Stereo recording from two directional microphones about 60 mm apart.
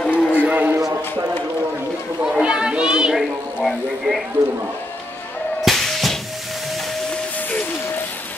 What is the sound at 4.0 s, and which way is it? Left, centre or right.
Speech, centre.